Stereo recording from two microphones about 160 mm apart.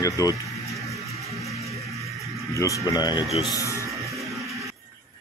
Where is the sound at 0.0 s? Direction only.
20° left (ahead or behind).